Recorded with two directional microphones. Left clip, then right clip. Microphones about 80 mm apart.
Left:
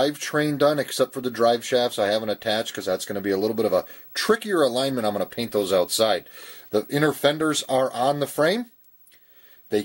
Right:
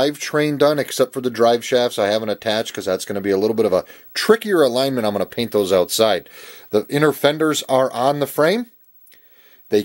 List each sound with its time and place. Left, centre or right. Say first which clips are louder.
0.0 s speech: right 4 dB; centre